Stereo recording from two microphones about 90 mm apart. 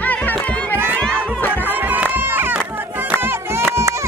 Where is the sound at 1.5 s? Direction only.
20° right (ahead or behind).